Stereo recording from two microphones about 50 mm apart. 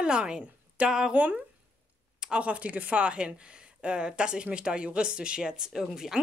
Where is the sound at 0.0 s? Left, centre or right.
Centre.